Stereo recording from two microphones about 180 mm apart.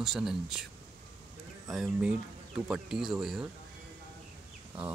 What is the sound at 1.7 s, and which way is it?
Speech, centre (ahead or behind).